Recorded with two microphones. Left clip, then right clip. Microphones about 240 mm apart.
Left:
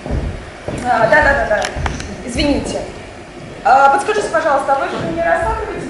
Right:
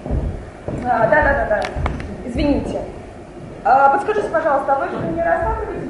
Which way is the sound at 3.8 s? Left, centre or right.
Centre.